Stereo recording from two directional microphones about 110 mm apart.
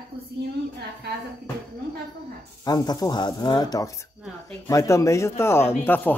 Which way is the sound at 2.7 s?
35° left (ahead or behind).